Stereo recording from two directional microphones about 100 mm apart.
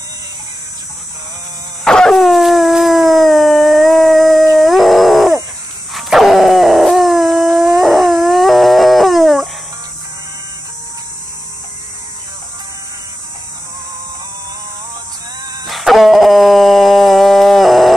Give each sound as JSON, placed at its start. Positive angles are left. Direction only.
{"t": 1.9, "sound": "dog", "side_deg": 5}
{"t": 15.6, "sound": "dog", "side_deg": 0}